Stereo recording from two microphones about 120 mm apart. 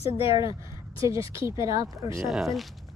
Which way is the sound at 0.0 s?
50° left (ahead or behind).